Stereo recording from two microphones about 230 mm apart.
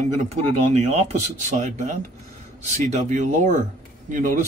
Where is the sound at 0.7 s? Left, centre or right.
Right.